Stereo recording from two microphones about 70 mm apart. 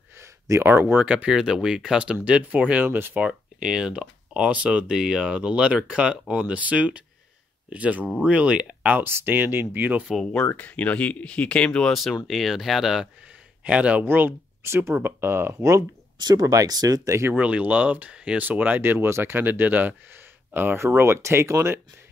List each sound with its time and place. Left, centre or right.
0.2 s speech: right
1.0 s speech: centre
3.3 s speech: centre
9.0 s speech: right
10.4 s speech: left
11.9 s speech: centre
13.7 s speech: centre
14.0 s speech: right
16.2 s speech: right
17.4 s speech: right
18.1 s speech: centre
18.4 s speech: right
20.8 s speech: right